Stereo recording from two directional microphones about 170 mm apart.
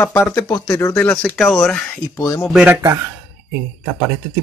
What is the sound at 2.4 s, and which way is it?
Speech, 5° right (ahead or behind).